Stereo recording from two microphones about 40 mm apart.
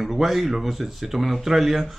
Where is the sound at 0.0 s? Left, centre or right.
Centre.